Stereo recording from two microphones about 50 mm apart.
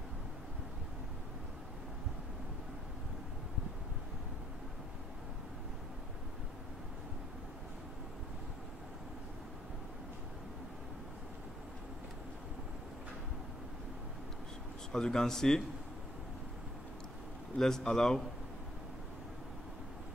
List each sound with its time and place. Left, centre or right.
14.9 s speech: centre
17.6 s speech: centre